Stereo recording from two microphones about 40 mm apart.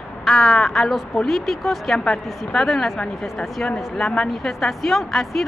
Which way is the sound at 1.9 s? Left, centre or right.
Centre.